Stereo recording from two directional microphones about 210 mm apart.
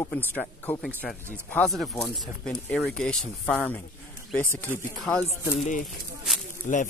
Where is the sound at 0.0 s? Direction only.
10° left (ahead or behind).